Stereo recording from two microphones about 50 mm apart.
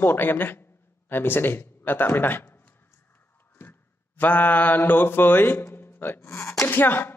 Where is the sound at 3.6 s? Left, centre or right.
Left.